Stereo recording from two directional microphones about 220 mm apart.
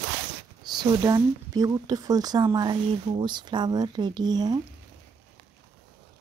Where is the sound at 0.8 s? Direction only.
15° right (ahead or behind).